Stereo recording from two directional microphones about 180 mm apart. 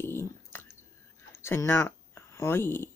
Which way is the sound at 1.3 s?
15° left (ahead or behind).